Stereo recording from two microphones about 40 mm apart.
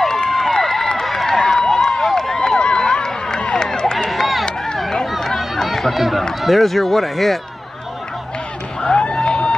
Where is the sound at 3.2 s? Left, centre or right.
Centre.